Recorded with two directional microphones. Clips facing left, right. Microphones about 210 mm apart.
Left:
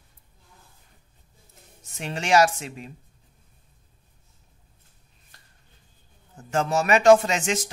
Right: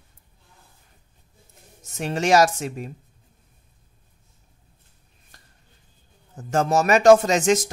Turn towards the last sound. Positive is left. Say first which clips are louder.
# right 5 dB
turn(degrees=-40)  # may be behind; listen again after turning